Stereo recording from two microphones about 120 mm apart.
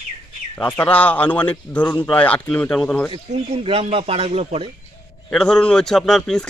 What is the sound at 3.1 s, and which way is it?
Speech, 50° right (ahead or behind).